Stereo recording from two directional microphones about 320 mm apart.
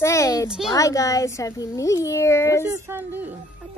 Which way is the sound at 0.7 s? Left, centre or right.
Centre.